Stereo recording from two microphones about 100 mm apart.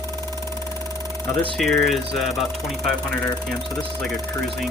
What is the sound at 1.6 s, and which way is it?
Speech, centre (ahead or behind).